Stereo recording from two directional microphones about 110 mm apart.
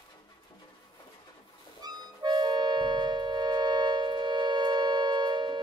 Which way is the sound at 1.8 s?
40° right (ahead or behind).